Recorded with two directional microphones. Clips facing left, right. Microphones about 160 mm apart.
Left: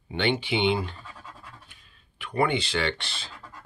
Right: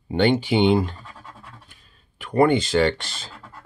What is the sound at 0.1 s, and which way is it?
Speech, 45° right (ahead or behind).